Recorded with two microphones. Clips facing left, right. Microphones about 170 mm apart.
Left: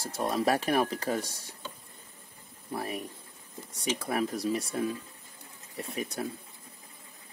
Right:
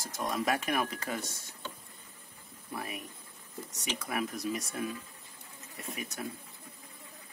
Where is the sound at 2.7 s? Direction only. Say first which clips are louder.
Left 5 dB; 35° left (ahead or behind).